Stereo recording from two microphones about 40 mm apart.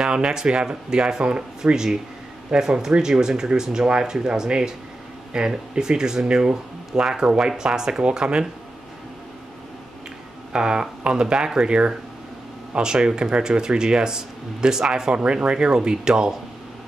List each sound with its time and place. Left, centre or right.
0.0 s speech: centre
10.5 s speech: right